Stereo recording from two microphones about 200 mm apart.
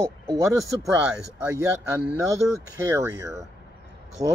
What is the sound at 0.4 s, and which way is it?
Speech, 15° right (ahead or behind).